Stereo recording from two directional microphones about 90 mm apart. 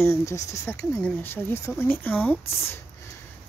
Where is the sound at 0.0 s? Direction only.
30° left (ahead or behind).